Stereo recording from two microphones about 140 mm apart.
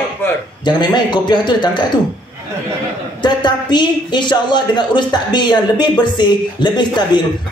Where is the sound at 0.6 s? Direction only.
30° left (ahead or behind).